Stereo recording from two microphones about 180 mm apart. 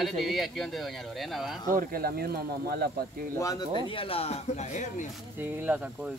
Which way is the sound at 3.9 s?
30° left (ahead or behind).